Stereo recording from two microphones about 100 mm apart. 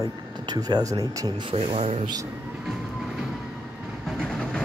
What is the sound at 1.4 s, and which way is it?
Speech, 65° right (ahead or behind).